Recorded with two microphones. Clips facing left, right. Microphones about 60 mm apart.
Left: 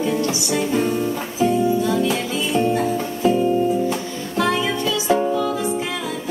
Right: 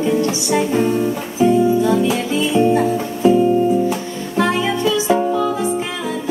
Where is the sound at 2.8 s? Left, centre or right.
Centre.